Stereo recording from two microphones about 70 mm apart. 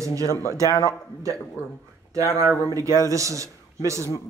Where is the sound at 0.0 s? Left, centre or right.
Right.